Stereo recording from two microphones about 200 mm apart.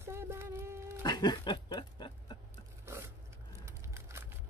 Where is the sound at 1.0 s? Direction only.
20° left (ahead or behind).